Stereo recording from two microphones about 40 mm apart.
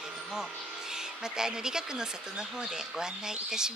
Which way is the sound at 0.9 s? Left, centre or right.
Centre.